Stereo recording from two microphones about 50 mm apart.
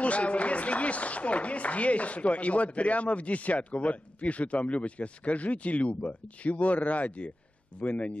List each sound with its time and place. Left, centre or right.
0.0 s a man's voice: left